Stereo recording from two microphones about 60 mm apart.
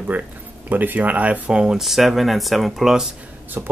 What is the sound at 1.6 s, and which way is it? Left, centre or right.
Speech, centre.